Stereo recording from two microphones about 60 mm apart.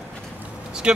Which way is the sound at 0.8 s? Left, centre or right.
Centre.